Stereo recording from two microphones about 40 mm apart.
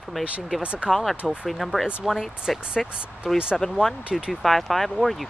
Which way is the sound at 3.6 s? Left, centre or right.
Centre.